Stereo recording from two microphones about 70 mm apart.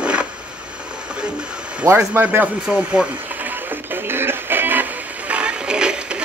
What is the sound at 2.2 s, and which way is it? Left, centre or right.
Speech, right.